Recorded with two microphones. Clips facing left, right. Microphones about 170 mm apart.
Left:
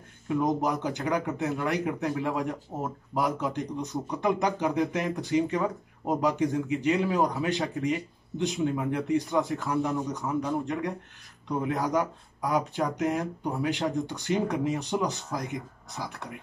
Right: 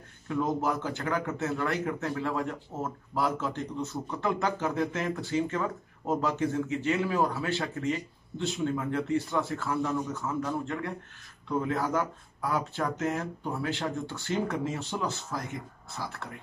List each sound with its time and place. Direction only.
0.3 s speech: 15° left (ahead or behind)